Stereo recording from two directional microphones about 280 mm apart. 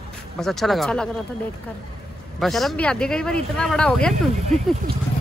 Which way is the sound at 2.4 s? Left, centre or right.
Centre.